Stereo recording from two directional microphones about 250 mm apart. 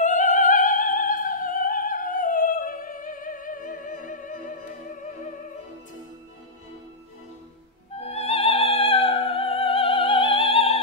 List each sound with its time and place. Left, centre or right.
0.0 s opera: left
8.0 s opera: left